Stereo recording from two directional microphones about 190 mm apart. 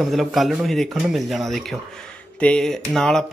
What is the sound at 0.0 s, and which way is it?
Speech, centre (ahead or behind).